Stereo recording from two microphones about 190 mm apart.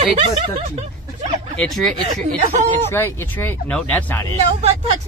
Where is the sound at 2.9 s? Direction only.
10° left (ahead or behind).